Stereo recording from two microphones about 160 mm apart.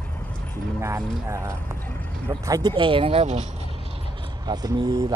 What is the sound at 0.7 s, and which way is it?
Speech, 15° right (ahead or behind).